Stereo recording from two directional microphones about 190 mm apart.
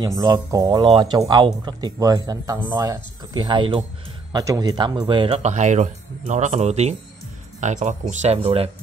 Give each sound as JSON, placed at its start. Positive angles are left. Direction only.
{"t": 0.0, "sound": "speech", "side_deg": -20}